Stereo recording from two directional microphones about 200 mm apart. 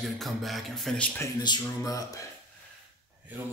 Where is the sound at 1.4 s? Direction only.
20° left (ahead or behind).